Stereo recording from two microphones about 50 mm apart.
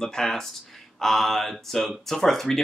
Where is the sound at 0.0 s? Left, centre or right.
Centre.